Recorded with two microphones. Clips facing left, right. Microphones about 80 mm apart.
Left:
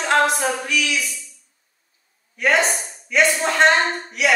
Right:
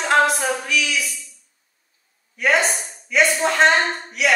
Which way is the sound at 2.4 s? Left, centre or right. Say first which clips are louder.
Even; centre.